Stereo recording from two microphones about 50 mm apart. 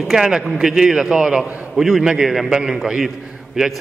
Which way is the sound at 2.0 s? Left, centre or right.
Centre.